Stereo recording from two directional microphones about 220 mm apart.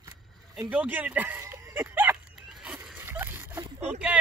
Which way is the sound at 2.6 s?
5° right (ahead or behind).